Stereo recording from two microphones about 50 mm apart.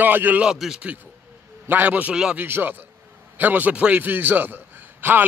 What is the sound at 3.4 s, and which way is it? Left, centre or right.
Speech, right.